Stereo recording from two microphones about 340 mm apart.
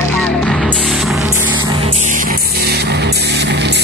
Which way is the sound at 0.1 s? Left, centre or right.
Centre.